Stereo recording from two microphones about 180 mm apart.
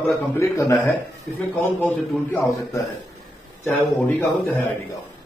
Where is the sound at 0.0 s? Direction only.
15° left (ahead or behind).